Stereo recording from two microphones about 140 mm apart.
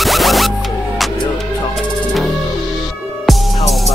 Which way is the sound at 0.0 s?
Centre (ahead or behind).